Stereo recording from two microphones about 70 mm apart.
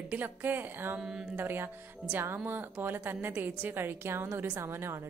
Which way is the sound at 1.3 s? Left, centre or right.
Right.